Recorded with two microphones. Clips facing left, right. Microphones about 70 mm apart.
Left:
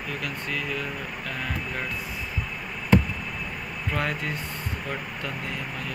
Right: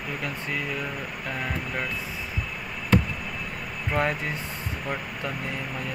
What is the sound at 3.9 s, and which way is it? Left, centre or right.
Speech, centre.